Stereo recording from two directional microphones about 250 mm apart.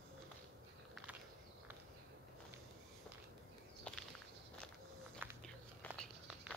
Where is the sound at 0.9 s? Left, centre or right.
Centre.